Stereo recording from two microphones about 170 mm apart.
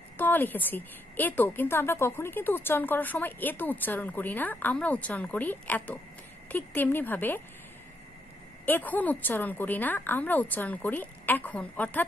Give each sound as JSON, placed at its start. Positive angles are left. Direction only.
{"t": 0.2, "sound": "a woman's voice", "side_deg": 10}
{"t": 8.6, "sound": "a woman's voice", "side_deg": 10}